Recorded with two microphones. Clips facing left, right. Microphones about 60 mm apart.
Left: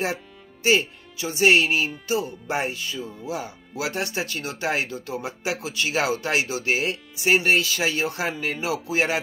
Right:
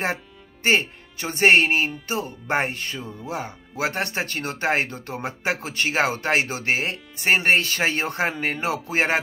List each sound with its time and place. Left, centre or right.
0.7 s speech: right